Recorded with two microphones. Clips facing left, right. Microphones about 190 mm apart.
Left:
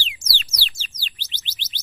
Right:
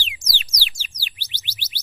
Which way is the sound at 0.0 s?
15° right (ahead or behind).